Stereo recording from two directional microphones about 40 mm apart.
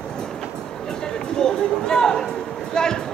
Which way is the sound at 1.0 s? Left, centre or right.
Centre.